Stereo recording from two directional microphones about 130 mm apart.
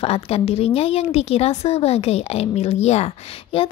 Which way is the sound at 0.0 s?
50° left (ahead or behind).